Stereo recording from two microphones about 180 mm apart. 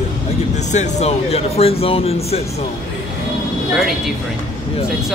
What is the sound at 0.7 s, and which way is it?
Speech, 40° left (ahead or behind).